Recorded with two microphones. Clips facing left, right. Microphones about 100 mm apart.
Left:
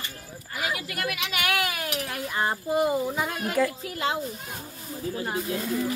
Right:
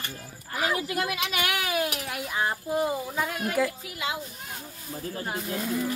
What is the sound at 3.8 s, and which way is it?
Speech, 35° left (ahead or behind).